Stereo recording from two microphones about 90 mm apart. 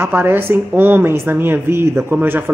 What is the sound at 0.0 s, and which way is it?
Speech, 25° right (ahead or behind).